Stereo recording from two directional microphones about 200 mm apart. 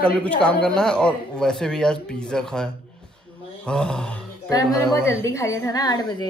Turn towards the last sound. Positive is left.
turn(degrees=20)  # may be behind; listen again after turning